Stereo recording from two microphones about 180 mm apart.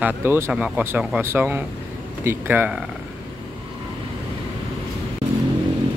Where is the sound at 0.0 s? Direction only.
10° right (ahead or behind).